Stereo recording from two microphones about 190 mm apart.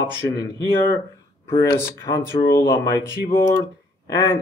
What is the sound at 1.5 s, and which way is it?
Speech, 15° left (ahead or behind).